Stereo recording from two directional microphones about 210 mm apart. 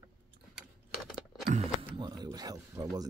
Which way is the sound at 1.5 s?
30° right (ahead or behind).